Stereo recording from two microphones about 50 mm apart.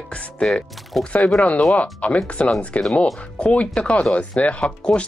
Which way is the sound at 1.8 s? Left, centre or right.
Left.